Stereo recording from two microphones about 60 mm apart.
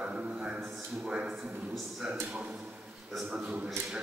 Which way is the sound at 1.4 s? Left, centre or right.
Centre.